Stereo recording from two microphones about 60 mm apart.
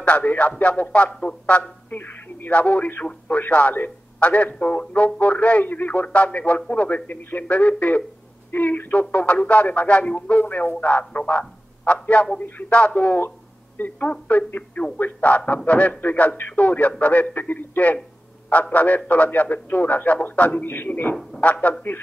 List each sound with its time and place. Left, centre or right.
0.0 s a man's voice: left